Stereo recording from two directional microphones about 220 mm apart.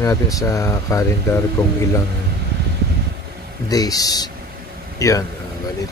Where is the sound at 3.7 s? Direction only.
15° left (ahead or behind).